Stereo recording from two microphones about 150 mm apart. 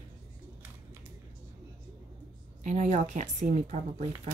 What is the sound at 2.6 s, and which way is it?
Speech, 55° right (ahead or behind).